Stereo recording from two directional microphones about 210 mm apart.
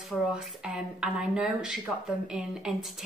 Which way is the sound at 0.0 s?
Centre (ahead or behind).